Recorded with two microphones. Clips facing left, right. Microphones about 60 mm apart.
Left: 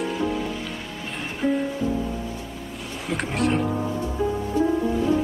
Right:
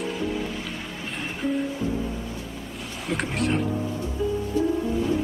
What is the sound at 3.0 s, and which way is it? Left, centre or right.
Speech, centre.